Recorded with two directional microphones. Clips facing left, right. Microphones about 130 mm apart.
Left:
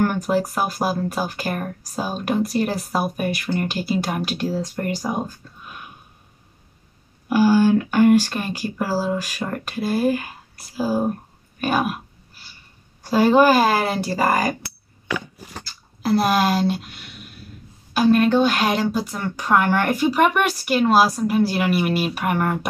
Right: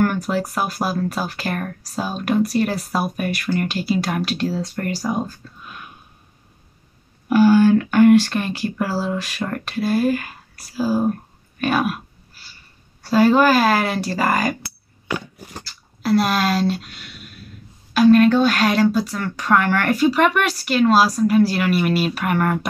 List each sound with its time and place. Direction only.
0.4 s speech: 20° left (ahead or behind)
7.2 s speech: 10° left (ahead or behind)
13.0 s speech: 20° left (ahead or behind)
16.1 s speech: 20° left (ahead or behind)